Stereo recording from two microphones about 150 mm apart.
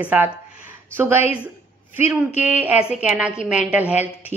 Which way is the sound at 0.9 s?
15° right (ahead or behind).